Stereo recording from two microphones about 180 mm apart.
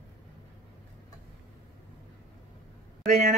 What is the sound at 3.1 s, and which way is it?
Speech, 40° right (ahead or behind).